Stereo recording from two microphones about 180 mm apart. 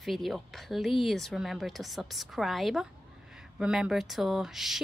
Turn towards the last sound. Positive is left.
turn(degrees=0)  # may be behind; listen again after turning